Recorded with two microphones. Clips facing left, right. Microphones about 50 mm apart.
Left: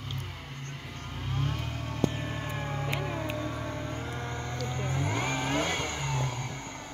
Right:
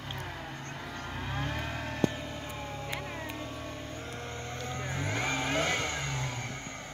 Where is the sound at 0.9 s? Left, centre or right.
Right.